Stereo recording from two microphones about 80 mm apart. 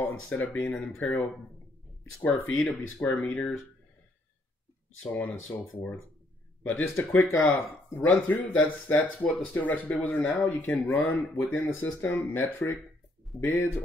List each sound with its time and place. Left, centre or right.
0.1 s speech: centre
2.2 s speech: centre
5.1 s speech: left